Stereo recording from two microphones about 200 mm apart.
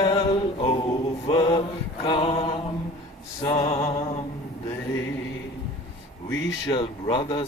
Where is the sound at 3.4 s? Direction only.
25° left (ahead or behind).